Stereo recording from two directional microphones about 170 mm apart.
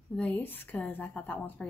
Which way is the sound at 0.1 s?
10° left (ahead or behind).